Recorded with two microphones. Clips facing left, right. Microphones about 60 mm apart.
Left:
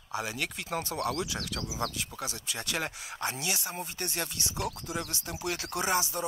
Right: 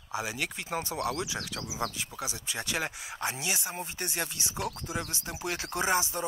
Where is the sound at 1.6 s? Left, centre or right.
Centre.